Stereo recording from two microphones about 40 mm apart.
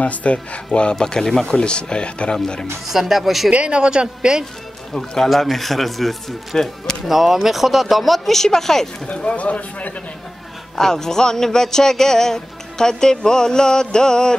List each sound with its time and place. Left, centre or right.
0.0 s speech: left
0.9 s a man's voice: centre
2.9 s speech: centre
3.5 s a man's voice: right
4.9 s a man's voice: centre
7.2 s speech: centre
8.4 s a man's voice: centre
9.1 s speech: left
10.8 s a man's voice: centre